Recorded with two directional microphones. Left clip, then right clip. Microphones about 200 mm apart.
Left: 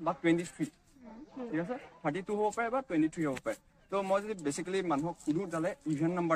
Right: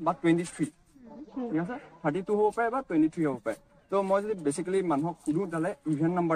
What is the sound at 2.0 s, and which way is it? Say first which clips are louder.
A man's voice: right 6 dB; 10° left (ahead or behind).